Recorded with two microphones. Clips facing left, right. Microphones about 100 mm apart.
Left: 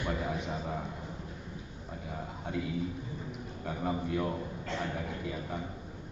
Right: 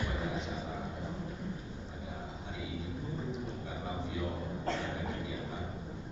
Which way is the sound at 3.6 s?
55° left (ahead or behind).